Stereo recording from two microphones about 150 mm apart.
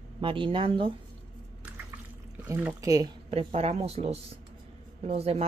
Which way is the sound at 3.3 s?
40° right (ahead or behind).